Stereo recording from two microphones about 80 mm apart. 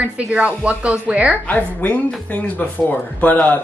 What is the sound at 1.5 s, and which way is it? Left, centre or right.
A woman's voice, left.